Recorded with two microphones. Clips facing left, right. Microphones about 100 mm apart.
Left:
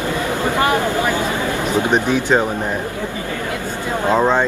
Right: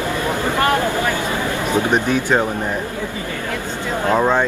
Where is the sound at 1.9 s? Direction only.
15° left (ahead or behind).